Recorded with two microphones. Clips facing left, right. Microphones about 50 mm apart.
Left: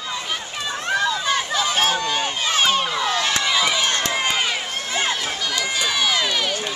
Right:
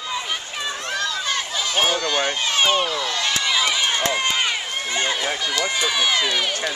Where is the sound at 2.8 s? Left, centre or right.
Centre.